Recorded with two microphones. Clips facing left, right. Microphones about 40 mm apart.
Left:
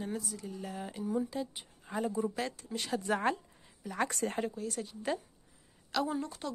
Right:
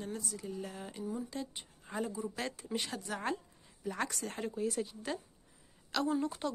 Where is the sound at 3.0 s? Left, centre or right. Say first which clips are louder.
Left 7 dB; left.